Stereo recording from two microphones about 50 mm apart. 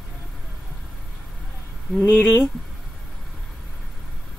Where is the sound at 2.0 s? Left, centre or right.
Left.